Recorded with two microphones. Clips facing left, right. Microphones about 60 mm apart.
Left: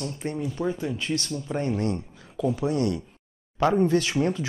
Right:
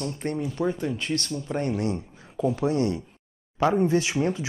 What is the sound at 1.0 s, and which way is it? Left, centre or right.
Speech, right.